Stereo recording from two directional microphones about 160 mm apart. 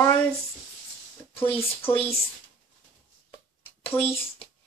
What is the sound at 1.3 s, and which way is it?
Speech, 10° left (ahead or behind).